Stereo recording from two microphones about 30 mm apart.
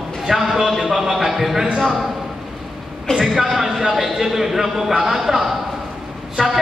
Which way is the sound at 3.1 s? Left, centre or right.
Left.